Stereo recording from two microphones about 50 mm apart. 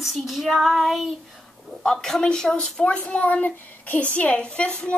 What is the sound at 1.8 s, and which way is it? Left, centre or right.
A woman's voice, centre.